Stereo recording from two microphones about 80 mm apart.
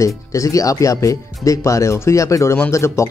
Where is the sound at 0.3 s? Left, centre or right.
Left.